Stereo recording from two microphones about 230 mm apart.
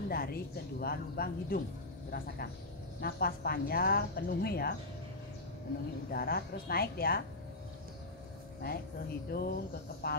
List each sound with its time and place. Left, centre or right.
0.1 s a woman's voice: left
6.0 s a woman's voice: left
8.6 s a woman's voice: left